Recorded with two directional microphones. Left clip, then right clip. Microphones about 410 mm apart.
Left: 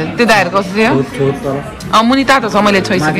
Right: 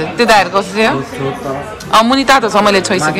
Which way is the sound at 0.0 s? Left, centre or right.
Centre.